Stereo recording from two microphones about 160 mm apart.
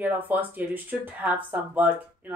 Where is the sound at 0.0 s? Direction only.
10° right (ahead or behind).